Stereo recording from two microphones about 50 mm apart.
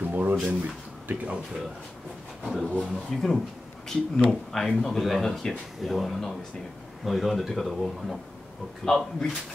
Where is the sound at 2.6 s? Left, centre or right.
Centre.